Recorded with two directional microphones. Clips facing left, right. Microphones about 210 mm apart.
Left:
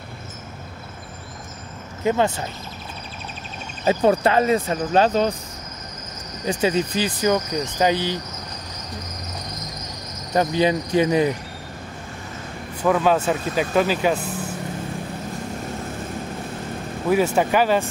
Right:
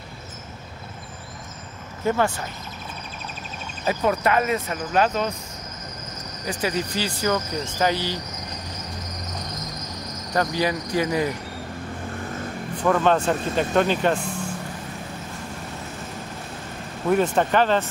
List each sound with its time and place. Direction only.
2.0 s cricket: 20° left (ahead or behind)
3.8 s speech: 30° left (ahead or behind)
6.4 s cricket: 25° left (ahead or behind)
7.8 s speech: 20° left (ahead or behind)
10.3 s cricket: 20° left (ahead or behind)
12.7 s speech: 5° left (ahead or behind)
17.1 s speech: 10° left (ahead or behind)